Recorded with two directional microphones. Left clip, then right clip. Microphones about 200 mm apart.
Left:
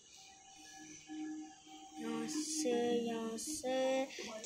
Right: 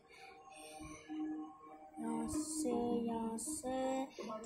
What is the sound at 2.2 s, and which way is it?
Music, 30° right (ahead or behind).